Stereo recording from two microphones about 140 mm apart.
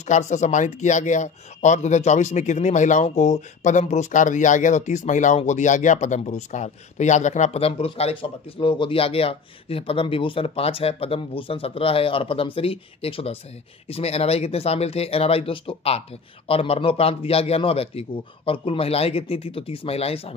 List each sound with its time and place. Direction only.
0.0 s a man's voice: 55° left (ahead or behind)